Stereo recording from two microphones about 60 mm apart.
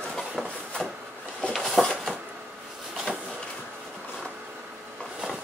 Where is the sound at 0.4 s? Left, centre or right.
Centre.